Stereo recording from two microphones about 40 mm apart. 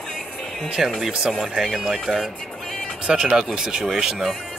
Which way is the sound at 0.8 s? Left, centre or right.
Centre.